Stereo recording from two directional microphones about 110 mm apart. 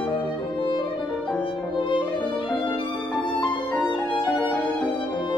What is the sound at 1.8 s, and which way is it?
Music, 50° left (ahead or behind).